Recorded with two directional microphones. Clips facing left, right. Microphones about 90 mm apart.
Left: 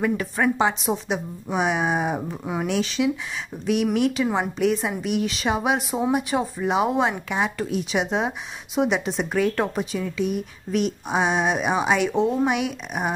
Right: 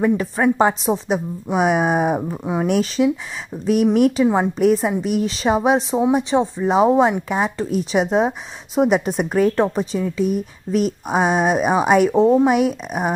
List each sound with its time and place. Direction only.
0.0 s speech: 25° right (ahead or behind)
0.6 s speech: 40° right (ahead or behind)
4.2 s speech: 25° right (ahead or behind)
4.6 s speech: 40° right (ahead or behind)
9.6 s speech: 30° right (ahead or behind)